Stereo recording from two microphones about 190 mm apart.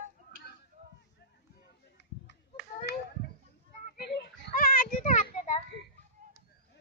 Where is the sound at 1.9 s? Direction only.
65° left (ahead or behind).